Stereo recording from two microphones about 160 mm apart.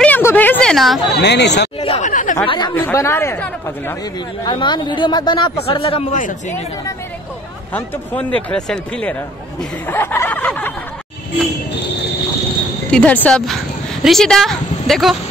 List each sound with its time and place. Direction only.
0.0 s a sound: 10° left (ahead or behind)
1.1 s speech: 90° left
1.8 s a man's voice: 35° left (ahead or behind)
2.0 s speech: 50° left (ahead or behind)
2.4 s a man's voice: 30° left (ahead or behind)
2.7 s speech: 15° left (ahead or behind)
4.5 s a man's voice: 30° left (ahead or behind)
7.7 s speech: 10° left (ahead or behind)
12.9 s a woman's voice: 10° left (ahead or behind)